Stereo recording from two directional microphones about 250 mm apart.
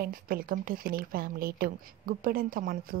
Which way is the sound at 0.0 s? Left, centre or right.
Right.